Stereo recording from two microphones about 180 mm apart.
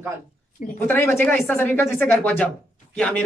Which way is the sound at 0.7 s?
15° left (ahead or behind).